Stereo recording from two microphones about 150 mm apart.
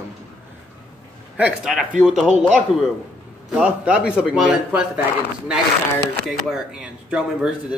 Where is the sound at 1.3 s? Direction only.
5° right (ahead or behind).